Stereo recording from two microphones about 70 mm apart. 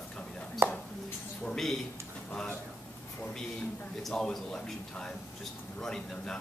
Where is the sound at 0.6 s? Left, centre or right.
Right.